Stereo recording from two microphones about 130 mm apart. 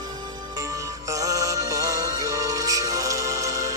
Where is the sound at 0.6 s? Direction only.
25° right (ahead or behind).